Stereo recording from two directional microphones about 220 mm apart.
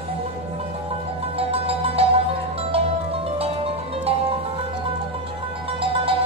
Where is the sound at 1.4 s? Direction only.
25° right (ahead or behind).